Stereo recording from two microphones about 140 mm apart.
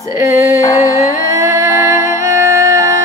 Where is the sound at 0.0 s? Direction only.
20° right (ahead or behind).